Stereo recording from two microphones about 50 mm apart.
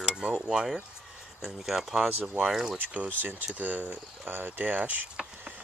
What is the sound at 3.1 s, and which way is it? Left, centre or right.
Speech, right.